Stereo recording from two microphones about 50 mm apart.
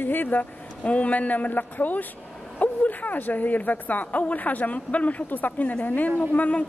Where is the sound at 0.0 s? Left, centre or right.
Left.